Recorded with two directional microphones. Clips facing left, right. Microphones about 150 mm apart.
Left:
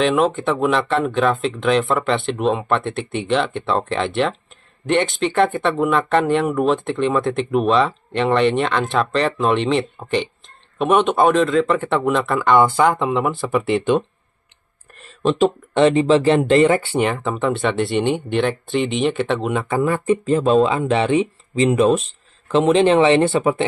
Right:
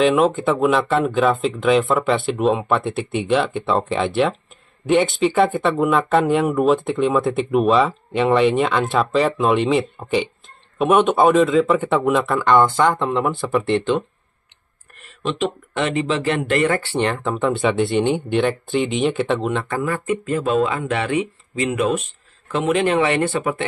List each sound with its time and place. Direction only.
0.0 s speech: centre (ahead or behind)
15.2 s speech: 40° left (ahead or behind); by 17.0 s 20° left (ahead or behind)
17.0 s speech: centre (ahead or behind)
19.8 s speech: 25° left (ahead or behind)